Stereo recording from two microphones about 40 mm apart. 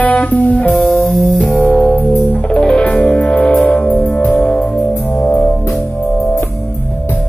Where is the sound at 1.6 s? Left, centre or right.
Left.